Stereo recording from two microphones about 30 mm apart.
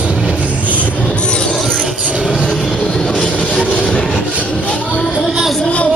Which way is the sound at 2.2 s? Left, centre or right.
Centre.